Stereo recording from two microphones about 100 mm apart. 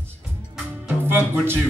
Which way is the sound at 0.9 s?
20° right (ahead or behind).